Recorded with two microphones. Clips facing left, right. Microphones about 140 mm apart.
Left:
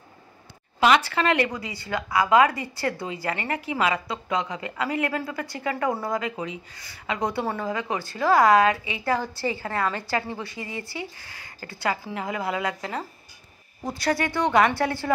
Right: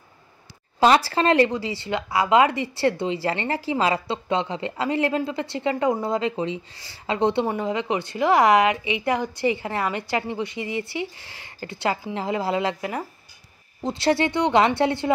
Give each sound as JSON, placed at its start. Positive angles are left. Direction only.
{"t": 0.7, "sound": "speech", "side_deg": -35}
{"t": 13.8, "sound": "speech", "side_deg": -25}